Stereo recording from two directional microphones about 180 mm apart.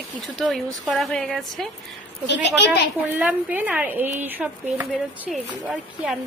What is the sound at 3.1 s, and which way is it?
Speech, 10° right (ahead or behind).